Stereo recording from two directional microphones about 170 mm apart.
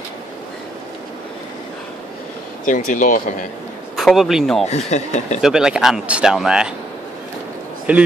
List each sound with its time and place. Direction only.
2.6 s speech: 50° left (ahead or behind)
3.9 s a man's voice: centre (ahead or behind)
4.6 s speech: 40° left (ahead or behind)
5.4 s speech: 5° right (ahead or behind)
7.9 s a man's voice: 10° right (ahead or behind)